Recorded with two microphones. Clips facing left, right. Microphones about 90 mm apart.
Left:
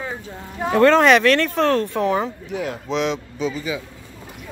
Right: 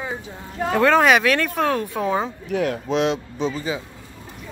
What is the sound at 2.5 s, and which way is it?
Speech, 65° right (ahead or behind).